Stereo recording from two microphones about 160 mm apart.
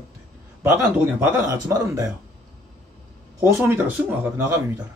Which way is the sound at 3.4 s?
15° right (ahead or behind).